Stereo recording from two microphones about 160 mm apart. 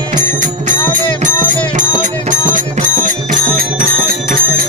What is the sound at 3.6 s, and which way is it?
Music, 65° right (ahead or behind).